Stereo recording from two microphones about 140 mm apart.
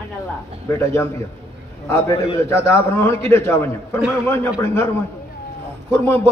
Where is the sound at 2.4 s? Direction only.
20° left (ahead or behind).